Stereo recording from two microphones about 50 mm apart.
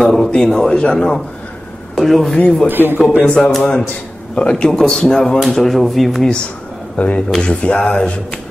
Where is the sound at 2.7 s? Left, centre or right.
Right.